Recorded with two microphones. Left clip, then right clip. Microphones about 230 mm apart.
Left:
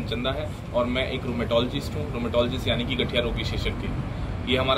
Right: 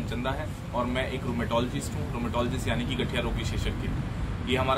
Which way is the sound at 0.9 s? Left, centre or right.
Centre.